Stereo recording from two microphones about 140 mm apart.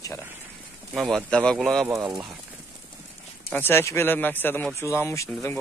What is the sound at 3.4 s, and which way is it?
Speech, 15° left (ahead or behind).